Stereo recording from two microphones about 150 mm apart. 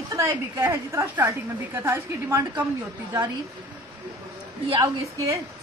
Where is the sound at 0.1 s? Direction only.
15° right (ahead or behind).